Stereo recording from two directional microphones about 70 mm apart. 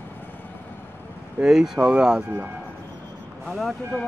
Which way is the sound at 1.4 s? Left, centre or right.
Centre.